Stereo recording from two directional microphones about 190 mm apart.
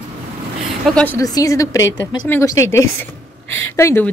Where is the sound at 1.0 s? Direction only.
15° left (ahead or behind).